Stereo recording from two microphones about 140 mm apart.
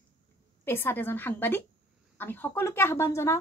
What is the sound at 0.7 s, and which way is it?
Speech, 15° left (ahead or behind).